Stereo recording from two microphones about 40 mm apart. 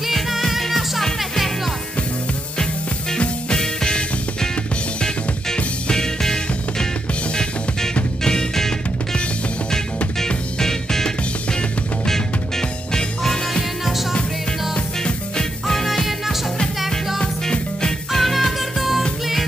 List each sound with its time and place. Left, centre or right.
0.0 s music: centre
3.5 s music: centre
5.9 s music: centre
8.2 s music: centre
10.2 s music: centre
15.6 s music: centre
17.2 s music: left
18.1 s music: centre